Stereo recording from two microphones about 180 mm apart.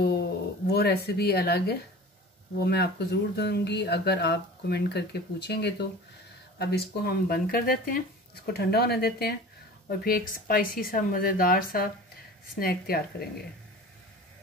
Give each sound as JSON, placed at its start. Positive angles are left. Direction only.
{"t": 0.0, "sound": "speech", "side_deg": 65}
{"t": 8.5, "sound": "speech", "side_deg": 65}